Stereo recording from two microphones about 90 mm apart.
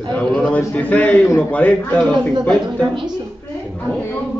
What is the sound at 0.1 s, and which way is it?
A man's voice, 15° left (ahead or behind).